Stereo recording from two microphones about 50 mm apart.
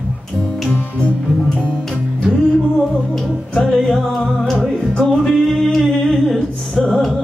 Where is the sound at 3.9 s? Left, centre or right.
Centre.